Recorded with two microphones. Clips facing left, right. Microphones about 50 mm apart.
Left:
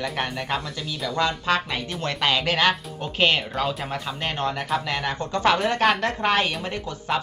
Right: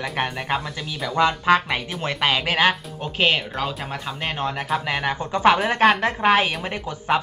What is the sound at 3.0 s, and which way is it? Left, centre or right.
Speech, centre.